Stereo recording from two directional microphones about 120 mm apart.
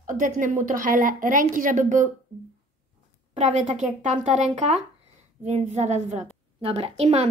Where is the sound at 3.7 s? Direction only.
85° right.